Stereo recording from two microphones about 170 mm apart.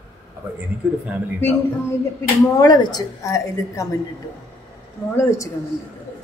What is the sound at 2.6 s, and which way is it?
A woman's voice, 20° left (ahead or behind).